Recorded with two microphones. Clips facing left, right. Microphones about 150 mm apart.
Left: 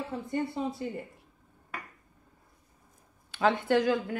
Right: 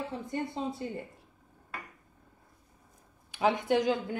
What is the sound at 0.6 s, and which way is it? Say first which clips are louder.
Speech: left 2 dB; 20° right (ahead or behind).